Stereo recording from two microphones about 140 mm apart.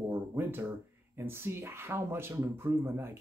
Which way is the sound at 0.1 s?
15° right (ahead or behind).